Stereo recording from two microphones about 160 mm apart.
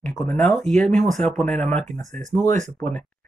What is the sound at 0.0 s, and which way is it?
Speech, 5° left (ahead or behind).